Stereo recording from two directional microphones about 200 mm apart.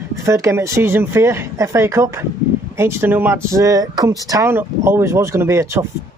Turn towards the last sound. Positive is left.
turn(degrees=-15)  # may be behind; listen again after turning